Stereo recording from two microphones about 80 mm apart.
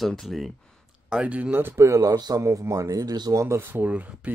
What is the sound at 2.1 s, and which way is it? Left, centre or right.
Speech, right.